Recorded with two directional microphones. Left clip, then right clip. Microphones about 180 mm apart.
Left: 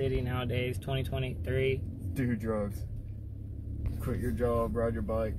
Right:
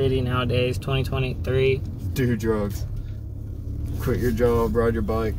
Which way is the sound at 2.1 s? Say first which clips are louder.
Right 9 dB; 55° right (ahead or behind).